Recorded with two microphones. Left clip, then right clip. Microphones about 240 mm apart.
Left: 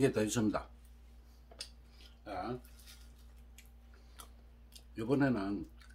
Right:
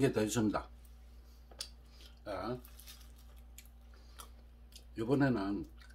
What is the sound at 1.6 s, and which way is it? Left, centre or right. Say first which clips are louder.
Dishes: right 2 dB; centre.